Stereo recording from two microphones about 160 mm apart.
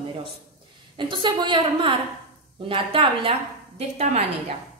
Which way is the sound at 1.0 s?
30° right (ahead or behind).